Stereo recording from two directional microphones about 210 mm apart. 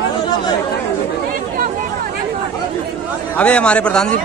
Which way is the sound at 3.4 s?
5° left (ahead or behind).